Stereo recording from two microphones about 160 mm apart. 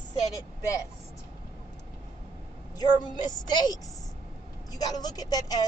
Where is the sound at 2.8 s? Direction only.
25° left (ahead or behind).